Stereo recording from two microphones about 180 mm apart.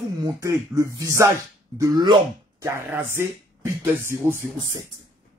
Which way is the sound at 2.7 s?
10° right (ahead or behind).